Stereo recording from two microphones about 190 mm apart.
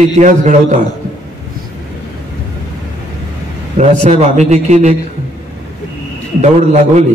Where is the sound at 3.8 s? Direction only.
40° right (ahead or behind).